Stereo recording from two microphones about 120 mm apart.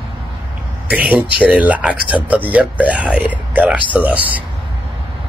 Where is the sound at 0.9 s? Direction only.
10° right (ahead or behind).